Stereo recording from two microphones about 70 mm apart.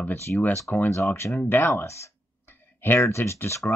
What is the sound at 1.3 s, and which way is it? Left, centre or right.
Speech, left.